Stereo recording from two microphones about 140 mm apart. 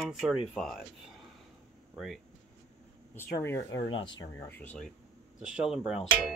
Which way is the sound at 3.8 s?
35° left (ahead or behind).